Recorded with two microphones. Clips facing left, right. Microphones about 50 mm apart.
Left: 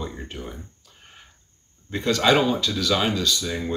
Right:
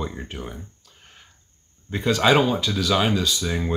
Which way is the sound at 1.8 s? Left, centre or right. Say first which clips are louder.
Right 1 dB; centre.